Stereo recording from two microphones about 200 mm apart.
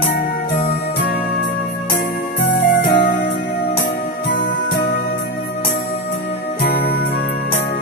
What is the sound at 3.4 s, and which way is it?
Music, 55° left (ahead or behind).